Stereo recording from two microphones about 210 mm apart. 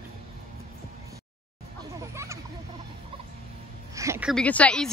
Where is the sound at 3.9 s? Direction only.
10° right (ahead or behind).